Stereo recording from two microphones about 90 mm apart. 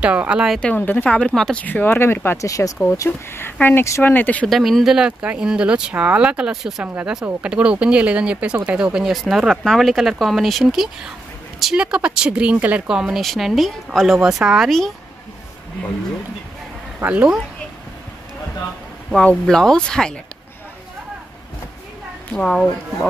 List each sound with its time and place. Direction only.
0.0 s speech: 15° right (ahead or behind)
0.6 s speech: 15° left (ahead or behind)
2.4 s speech: 40° left (ahead or behind)
3.1 s speech: 25° left (ahead or behind)
4.5 s speech: centre (ahead or behind)
17.0 s speech: 15° right (ahead or behind)
19.1 s speech: 10° left (ahead or behind)
22.3 s speech: 5° left (ahead or behind)